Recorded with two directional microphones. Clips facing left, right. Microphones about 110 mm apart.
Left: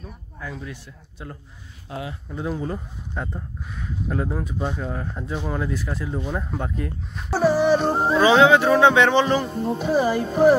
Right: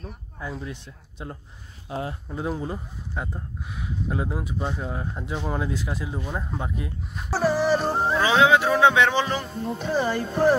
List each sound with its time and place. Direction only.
0.7 s speech: 25° right (ahead or behind)
1.9 s speech: 35° right (ahead or behind)
2.3 s speech: 25° right (ahead or behind)
2.6 s speech: 10° right (ahead or behind); by 10.5 s 5° left (ahead or behind)